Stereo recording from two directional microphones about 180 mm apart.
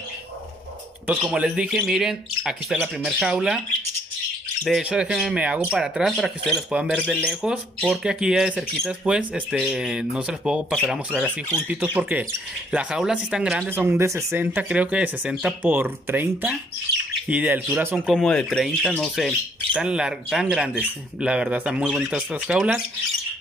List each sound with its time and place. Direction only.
1.0 s speech: 5° right (ahead or behind)
4.6 s speech: 5° right (ahead or behind)